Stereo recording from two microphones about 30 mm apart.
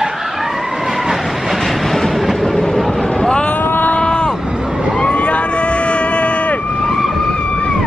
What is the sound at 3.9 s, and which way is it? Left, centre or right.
Vehicle, left.